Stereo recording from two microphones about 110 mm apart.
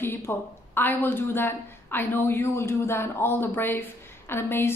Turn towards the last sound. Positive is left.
turn(degrees=20)  # may be behind; listen again after turning